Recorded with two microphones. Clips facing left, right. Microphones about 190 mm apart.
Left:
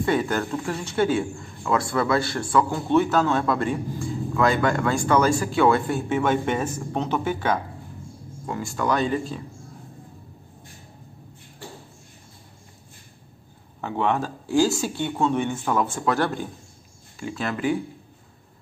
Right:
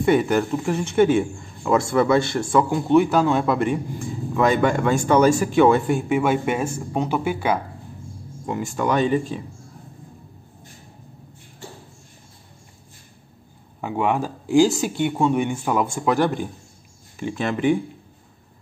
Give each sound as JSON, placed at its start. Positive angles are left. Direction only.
{"t": 0.0, "sound": "a man's voice", "side_deg": -15}
{"t": 13.7, "sound": "a man's voice", "side_deg": -10}